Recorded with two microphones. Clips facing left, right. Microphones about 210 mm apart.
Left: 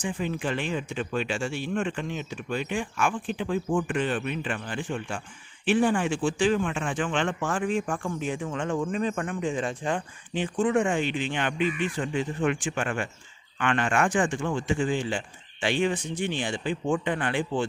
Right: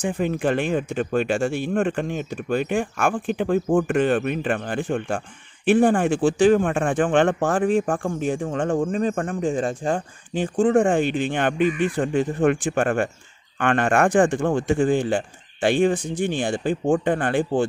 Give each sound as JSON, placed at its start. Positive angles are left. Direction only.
{"t": 0.0, "sound": "speech", "side_deg": -55}